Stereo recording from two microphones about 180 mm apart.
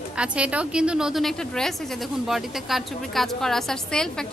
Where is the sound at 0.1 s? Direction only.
5° right (ahead or behind).